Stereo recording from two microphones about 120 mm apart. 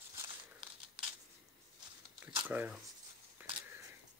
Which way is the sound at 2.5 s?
15° right (ahead or behind).